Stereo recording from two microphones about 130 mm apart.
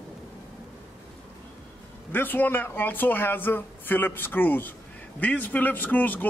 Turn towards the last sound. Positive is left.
turn(degrees=15)  # may be behind; listen again after turning